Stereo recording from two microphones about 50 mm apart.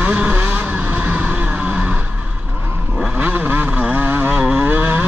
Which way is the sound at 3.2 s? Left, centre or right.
Right.